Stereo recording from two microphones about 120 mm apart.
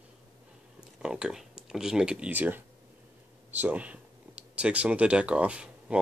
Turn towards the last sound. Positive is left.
turn(degrees=-10)  # may be behind; listen again after turning